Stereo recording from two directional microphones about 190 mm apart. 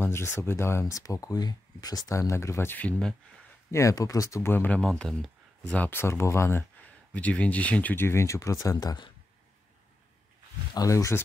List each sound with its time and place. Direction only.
0.0 s speech: 10° left (ahead or behind)
3.7 s speech: 15° left (ahead or behind)
10.7 s speech: 20° left (ahead or behind)